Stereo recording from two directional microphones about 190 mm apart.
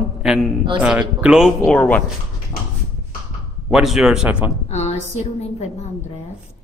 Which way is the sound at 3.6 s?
Centre (ahead or behind).